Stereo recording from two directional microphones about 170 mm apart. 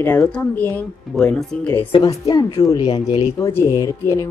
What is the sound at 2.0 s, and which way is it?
Speech, 20° left (ahead or behind).